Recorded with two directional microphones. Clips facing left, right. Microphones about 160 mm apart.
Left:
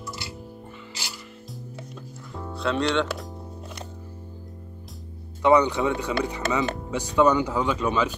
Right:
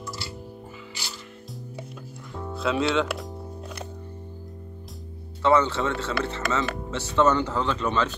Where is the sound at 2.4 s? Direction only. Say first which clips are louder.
Even; centre (ahead or behind).